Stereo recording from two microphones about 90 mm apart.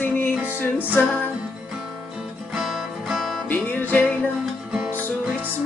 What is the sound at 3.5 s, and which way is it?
Music, 20° left (ahead or behind).